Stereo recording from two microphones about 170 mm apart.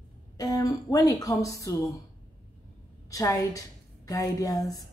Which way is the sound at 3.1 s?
20° left (ahead or behind).